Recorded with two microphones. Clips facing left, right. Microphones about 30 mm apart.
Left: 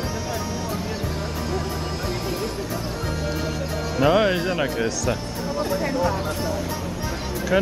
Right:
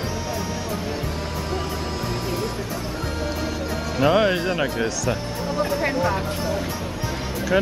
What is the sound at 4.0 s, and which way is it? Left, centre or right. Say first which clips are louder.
Speech: even; centre.